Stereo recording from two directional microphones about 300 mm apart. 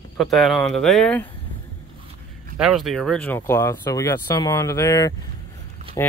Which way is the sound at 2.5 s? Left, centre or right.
Centre.